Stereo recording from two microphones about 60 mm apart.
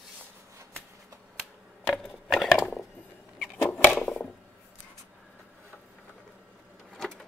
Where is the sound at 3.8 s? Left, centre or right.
Left.